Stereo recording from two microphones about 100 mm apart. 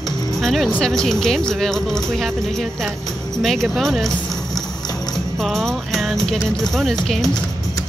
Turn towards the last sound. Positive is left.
turn(degrees=5)  # may be behind; listen again after turning